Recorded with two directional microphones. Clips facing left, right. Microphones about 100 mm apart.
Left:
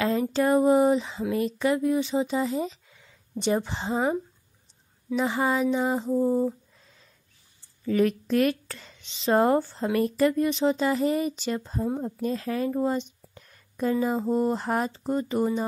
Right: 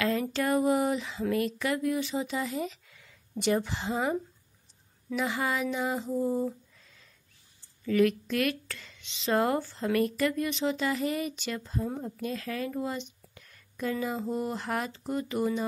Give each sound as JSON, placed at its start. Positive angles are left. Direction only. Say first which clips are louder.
{"t": 0.0, "sound": "a sound", "louder": "left 5 dB", "side_deg": 25}
{"t": 1.2, "sound": "speech", "louder": "left 3 dB", "side_deg": 20}
{"t": 5.1, "sound": "speech", "louder": "left 5 dB", "side_deg": 30}
{"t": 7.8, "sound": "speech", "louder": "left 1 dB", "side_deg": 30}